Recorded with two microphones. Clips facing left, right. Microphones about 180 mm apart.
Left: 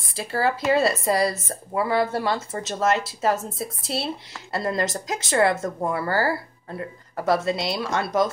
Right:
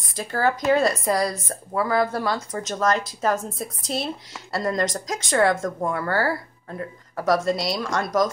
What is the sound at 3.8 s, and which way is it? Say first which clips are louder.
Speech: right 1 dB; 30° left (ahead or behind).